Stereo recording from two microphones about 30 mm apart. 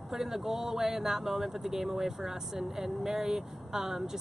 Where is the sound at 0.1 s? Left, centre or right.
Centre.